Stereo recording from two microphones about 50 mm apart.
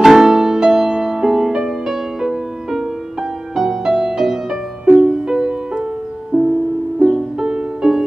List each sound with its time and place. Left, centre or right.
0.0 s music: centre